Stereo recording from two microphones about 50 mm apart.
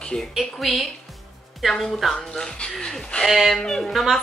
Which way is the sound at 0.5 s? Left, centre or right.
Centre.